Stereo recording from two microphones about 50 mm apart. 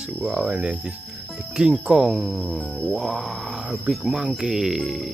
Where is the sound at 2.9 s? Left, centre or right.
Centre.